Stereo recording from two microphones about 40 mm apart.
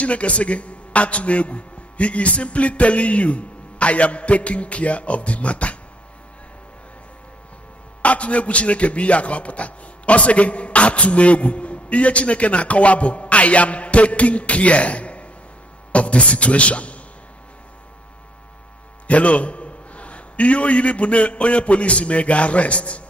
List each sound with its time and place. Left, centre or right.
0.0 s a man's voice: left
8.0 s a man's voice: left
19.0 s a man's voice: left